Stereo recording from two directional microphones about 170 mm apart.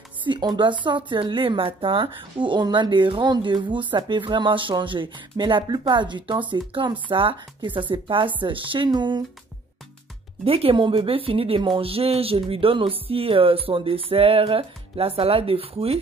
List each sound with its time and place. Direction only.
0.3 s speech: 25° right (ahead or behind)
10.4 s speech: 35° right (ahead or behind)